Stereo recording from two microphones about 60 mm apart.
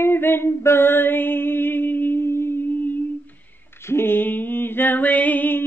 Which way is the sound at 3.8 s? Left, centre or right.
Left.